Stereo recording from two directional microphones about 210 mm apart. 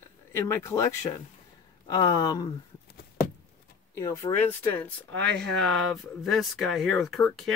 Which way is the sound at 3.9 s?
15° left (ahead or behind).